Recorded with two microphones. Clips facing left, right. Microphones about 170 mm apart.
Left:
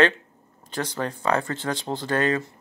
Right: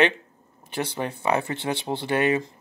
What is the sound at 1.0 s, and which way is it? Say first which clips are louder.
Speech: left 1 dB; 10° right (ahead or behind).